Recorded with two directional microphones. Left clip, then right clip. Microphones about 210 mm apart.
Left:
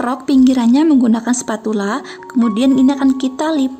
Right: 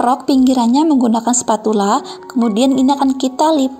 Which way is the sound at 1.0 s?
25° left (ahead or behind).